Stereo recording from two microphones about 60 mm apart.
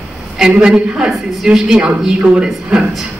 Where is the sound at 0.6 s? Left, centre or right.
Centre.